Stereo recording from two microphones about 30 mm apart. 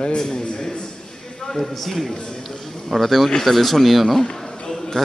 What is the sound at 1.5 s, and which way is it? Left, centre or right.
Speech, centre.